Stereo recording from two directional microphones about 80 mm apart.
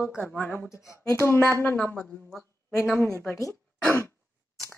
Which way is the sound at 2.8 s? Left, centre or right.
Left.